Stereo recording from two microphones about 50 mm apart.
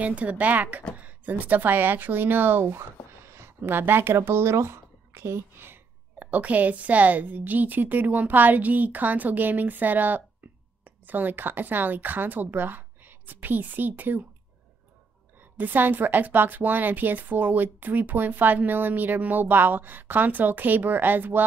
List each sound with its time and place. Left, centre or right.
0.0 s a woman's voice: right
3.3 s a sound: right
3.6 s a woman's voice: right
6.1 s a woman's voice: right
15.5 s a woman's voice: right